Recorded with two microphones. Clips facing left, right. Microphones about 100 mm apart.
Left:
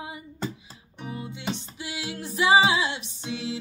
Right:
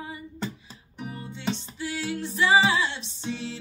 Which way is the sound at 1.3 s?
15° left (ahead or behind).